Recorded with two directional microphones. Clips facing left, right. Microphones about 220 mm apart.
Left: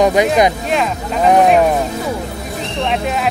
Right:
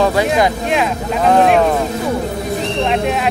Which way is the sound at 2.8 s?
Centre (ahead or behind).